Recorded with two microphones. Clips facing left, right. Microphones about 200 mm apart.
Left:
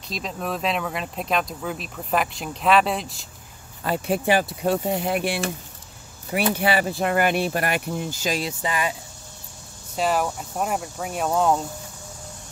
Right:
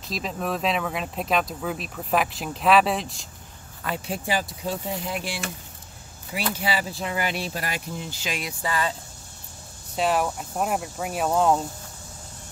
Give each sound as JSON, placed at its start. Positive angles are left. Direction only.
{"t": 0.1, "sound": "speech", "side_deg": 0}
{"t": 4.1, "sound": "speech", "side_deg": 60}
{"t": 6.5, "sound": "speech", "side_deg": 60}
{"t": 8.5, "sound": "speech", "side_deg": 15}
{"t": 9.9, "sound": "speech", "side_deg": 0}